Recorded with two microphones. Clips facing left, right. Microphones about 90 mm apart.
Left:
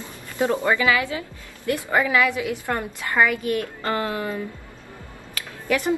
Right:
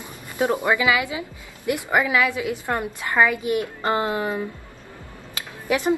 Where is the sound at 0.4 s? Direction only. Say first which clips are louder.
Even; 15° right (ahead or behind).